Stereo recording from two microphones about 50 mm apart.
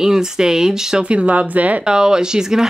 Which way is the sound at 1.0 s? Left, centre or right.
Right.